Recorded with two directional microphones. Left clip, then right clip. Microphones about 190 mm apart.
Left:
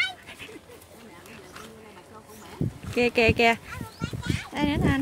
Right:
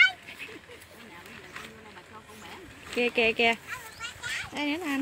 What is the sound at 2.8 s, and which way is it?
Speech, 10° left (ahead or behind).